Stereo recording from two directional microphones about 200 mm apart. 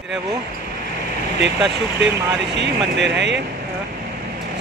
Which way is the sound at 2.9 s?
60° right (ahead or behind).